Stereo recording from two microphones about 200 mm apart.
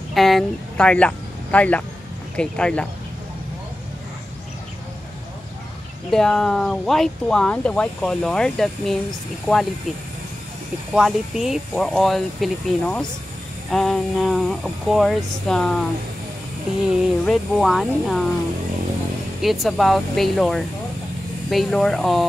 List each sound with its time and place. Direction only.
0.1 s speech: centre (ahead or behind)
6.0 s speech: 5° left (ahead or behind)
10.9 s speech: centre (ahead or behind)
16.9 s speech: centre (ahead or behind)
19.4 s speech: centre (ahead or behind)